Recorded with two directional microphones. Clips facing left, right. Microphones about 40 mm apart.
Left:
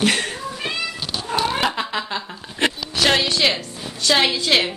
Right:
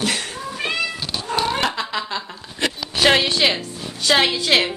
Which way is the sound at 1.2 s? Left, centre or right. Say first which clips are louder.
Even; centre.